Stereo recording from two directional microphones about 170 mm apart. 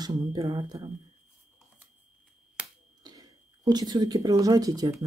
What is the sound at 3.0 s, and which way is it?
Speech, 25° right (ahead or behind).